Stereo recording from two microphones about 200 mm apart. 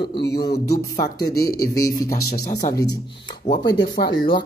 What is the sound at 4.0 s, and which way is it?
Speech, 35° left (ahead or behind).